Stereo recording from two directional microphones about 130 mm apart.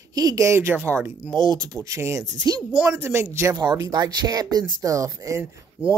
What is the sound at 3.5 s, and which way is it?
Speech, 30° right (ahead or behind).